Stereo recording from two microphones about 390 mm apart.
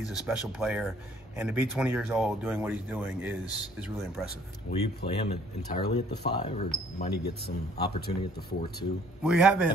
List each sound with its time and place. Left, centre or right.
0.3 s speech: centre
4.6 s speech: centre
9.2 s speech: centre